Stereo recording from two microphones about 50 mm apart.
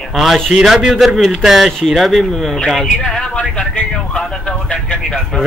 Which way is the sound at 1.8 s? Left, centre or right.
Centre.